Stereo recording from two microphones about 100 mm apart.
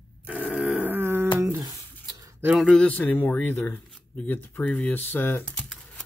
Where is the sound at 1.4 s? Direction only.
35° right (ahead or behind).